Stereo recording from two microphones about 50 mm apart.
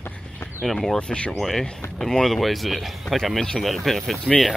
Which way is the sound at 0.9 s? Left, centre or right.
Left.